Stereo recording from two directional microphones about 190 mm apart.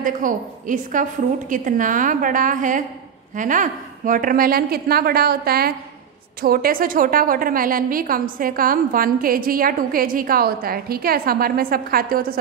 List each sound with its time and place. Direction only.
0.0 s a woman's voice: 45° right (ahead or behind)